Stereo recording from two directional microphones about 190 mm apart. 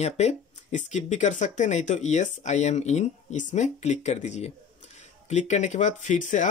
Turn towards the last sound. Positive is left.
turn(degrees=40)  # may be behind; listen again after turning